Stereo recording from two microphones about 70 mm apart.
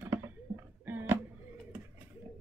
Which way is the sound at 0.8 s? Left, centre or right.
Right.